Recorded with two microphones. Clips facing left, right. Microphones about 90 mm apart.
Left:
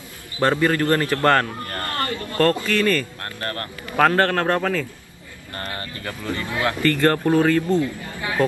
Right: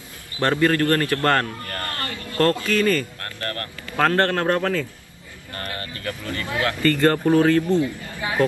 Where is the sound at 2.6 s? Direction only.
10° right (ahead or behind).